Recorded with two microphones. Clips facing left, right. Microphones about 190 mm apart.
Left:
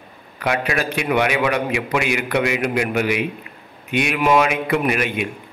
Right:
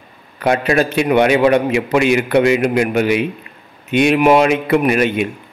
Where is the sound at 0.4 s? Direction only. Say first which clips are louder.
Right 7 dB; 30° right (ahead or behind).